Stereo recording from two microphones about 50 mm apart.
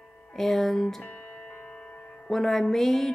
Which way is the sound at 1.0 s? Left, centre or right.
Left.